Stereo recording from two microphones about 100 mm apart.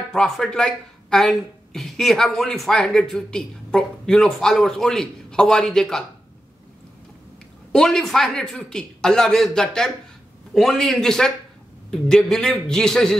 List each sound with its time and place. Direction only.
0.1 s speech: 5° left (ahead or behind)
7.7 s speech: 5° left (ahead or behind)